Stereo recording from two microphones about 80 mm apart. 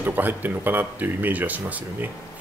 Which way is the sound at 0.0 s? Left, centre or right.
Right.